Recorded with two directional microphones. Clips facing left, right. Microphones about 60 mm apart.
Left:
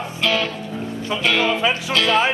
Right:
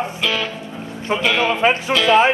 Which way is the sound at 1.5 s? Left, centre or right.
Right.